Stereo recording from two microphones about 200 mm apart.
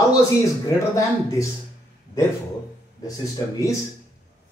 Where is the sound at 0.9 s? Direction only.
15° left (ahead or behind).